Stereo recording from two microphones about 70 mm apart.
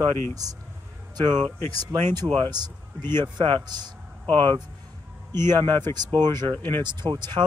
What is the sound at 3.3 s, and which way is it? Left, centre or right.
Speech, right.